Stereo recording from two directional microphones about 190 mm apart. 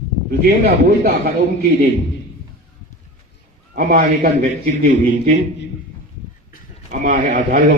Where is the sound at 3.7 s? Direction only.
50° right (ahead or behind).